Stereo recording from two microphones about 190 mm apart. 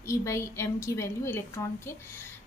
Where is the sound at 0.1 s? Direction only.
15° left (ahead or behind).